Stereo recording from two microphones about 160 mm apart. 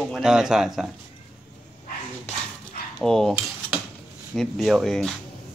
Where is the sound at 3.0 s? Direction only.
5° left (ahead or behind).